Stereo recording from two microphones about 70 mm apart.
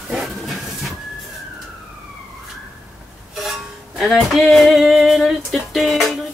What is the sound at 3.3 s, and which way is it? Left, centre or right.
Music, centre.